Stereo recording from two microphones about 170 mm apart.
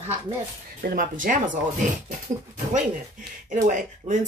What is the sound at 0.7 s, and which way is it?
Speech, 55° right (ahead or behind).